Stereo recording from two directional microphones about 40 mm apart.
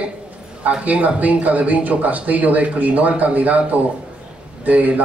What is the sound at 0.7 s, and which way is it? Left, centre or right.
A man's voice, right.